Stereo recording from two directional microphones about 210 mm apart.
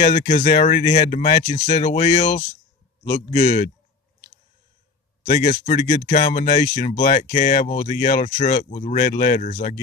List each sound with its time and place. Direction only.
0.0 s a man's voice: 40° left (ahead or behind)
5.3 s speech: 40° left (ahead or behind)